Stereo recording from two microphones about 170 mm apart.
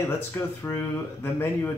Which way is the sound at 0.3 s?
15° left (ahead or behind).